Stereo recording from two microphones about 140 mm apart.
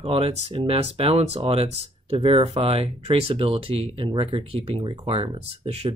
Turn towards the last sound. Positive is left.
turn(degrees=-45)  # may be behind; listen again after turning